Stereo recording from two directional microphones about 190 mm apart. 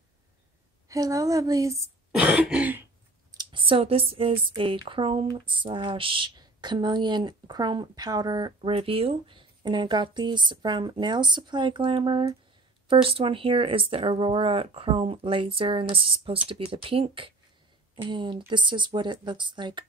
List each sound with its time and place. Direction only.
0.8 s speech: 15° right (ahead or behind)
2.1 s throat clearing: 5° right (ahead or behind)
3.3 s speech: 25° right (ahead or behind)